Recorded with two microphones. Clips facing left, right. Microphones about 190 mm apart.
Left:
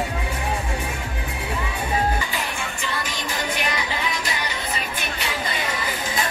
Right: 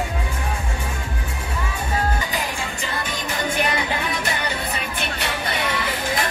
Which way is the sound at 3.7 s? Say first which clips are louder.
Right 2 dB; 60° right (ahead or behind).